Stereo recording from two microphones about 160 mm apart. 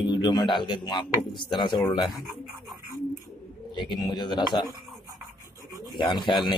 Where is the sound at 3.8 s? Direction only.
25° left (ahead or behind).